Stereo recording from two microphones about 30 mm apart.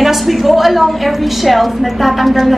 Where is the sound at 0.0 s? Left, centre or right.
Centre.